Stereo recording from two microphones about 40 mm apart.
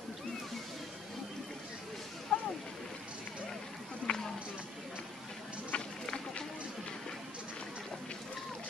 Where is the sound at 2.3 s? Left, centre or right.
Centre.